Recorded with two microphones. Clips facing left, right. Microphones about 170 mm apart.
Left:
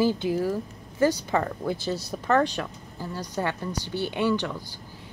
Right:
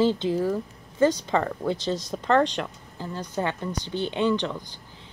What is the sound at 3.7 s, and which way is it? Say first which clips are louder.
Speech: right 1 dB; 10° left (ahead or behind).